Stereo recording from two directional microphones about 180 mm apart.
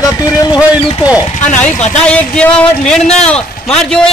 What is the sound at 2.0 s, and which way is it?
Speech, 5° left (ahead or behind).